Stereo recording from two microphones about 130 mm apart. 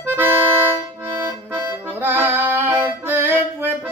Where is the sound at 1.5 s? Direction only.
15° right (ahead or behind).